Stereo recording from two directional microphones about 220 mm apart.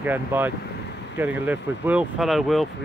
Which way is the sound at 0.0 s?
10° right (ahead or behind).